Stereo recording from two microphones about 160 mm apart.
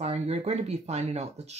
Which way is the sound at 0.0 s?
40° right (ahead or behind).